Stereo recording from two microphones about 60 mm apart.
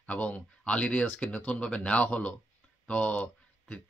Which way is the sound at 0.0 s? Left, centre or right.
Left.